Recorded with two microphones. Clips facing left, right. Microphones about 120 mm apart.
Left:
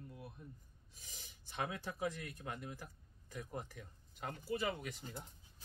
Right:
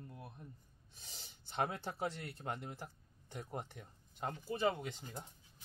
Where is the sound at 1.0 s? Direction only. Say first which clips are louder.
Right 2 dB; 30° right (ahead or behind).